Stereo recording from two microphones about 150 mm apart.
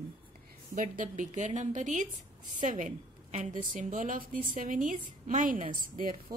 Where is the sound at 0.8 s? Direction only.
60° right (ahead or behind).